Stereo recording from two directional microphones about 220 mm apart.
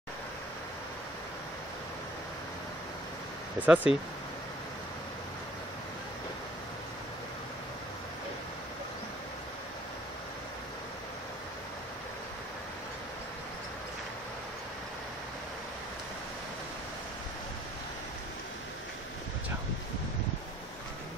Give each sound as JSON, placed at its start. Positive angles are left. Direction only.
{"t": 3.5, "sound": "speech", "side_deg": -5}